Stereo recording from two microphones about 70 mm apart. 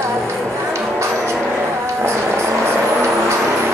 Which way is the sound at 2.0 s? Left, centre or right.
Right.